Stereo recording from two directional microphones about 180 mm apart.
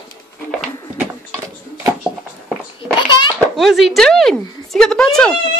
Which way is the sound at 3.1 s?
25° left (ahead or behind).